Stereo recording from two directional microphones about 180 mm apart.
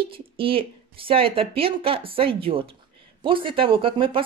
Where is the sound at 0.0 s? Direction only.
30° right (ahead or behind).